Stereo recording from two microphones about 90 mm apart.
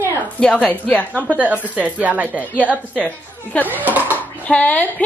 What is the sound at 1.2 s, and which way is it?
Speech, 15° right (ahead or behind).